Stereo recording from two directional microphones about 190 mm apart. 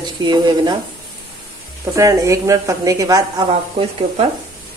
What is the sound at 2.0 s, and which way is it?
Speech, 15° right (ahead or behind).